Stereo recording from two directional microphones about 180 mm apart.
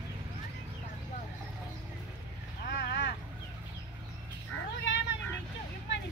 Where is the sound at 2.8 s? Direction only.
75° left (ahead or behind).